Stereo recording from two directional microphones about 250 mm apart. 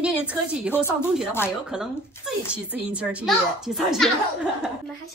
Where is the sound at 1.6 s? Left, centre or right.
Centre.